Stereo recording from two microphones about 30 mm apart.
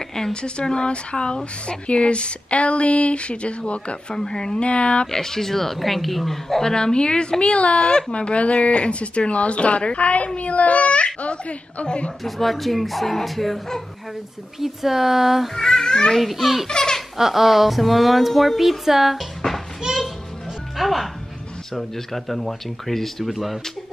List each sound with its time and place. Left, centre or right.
0.3 s a woman's voice: left
4.1 s a child's voice: left
4.6 s a woman's voice: left
5.0 s a woman's voice: centre
6.6 s a woman's voice: left
12.2 s speech: centre
14.6 s speech: centre
15.5 s a child's voice: left
16.2 s speech: centre
16.6 s speech: left
17.2 s speech: centre
20.7 s music: centre
21.7 s a woman's voice: centre
23.2 s speech: centre